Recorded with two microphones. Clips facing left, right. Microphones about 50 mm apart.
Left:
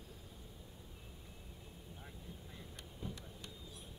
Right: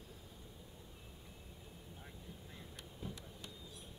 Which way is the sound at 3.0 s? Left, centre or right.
Centre.